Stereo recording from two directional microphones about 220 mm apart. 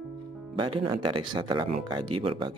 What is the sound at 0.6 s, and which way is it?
Speech, 20° right (ahead or behind).